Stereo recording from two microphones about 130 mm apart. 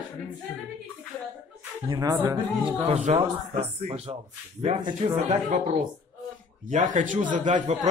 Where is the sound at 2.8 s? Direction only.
55° right (ahead or behind).